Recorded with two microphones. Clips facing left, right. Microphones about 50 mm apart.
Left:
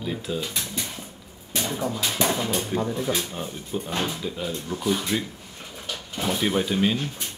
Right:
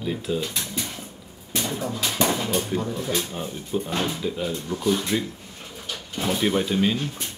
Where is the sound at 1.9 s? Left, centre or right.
Centre.